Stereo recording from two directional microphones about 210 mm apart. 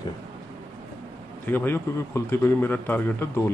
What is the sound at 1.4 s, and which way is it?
A man's voice, 10° left (ahead or behind).